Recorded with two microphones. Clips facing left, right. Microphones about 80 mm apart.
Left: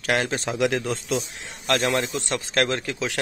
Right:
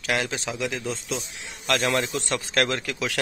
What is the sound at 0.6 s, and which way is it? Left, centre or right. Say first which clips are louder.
Speech: left 9 dB; left.